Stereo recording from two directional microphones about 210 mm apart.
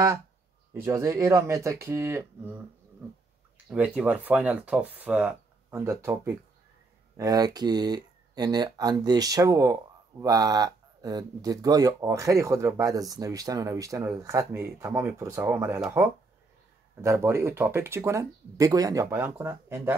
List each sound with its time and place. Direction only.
0.7 s speech: 15° right (ahead or behind)
3.7 s speech: 5° right (ahead or behind)